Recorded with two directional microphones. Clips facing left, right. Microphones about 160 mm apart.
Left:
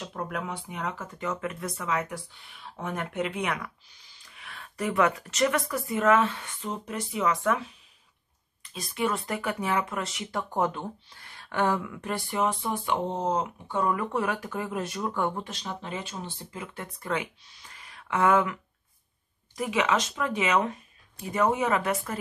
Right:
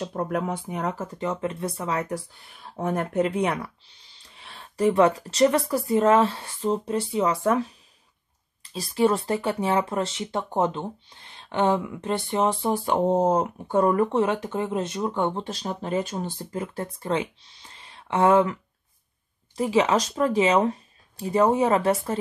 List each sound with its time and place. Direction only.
0.0 s speech: 35° right (ahead or behind)
8.7 s speech: 30° right (ahead or behind)
14.1 s speech: 25° right (ahead or behind)